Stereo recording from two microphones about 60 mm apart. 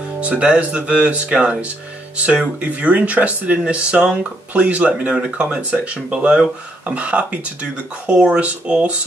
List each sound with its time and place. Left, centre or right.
0.2 s speech: right